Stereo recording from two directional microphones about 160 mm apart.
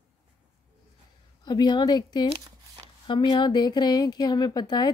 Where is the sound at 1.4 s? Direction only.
25° left (ahead or behind).